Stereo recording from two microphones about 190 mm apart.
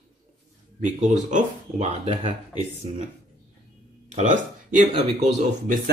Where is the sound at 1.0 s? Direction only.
40° right (ahead or behind).